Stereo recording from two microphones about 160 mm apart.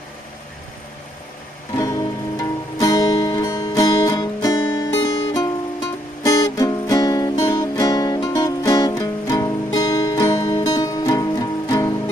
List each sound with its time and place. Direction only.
1.8 s music: 20° left (ahead or behind)